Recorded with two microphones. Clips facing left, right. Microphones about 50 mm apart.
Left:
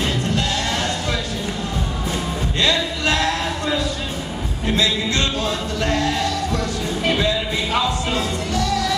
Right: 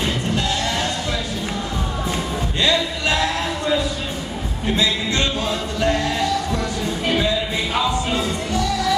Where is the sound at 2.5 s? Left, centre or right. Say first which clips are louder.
Even; right.